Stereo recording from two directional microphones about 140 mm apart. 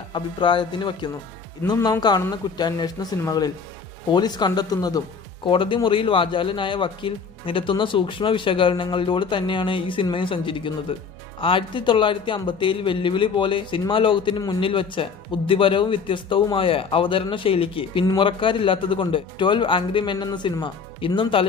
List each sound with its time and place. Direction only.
0.1 s speech: 35° left (ahead or behind)